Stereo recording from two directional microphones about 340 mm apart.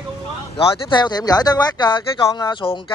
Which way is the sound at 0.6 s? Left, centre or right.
Centre.